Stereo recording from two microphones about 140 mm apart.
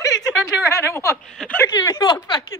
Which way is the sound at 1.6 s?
30° left (ahead or behind).